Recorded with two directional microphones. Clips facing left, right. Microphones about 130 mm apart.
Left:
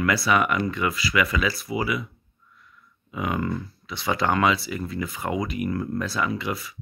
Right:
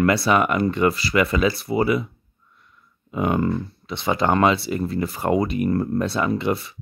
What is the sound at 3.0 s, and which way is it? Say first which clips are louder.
Speech: right 6 dB; 35° right (ahead or behind).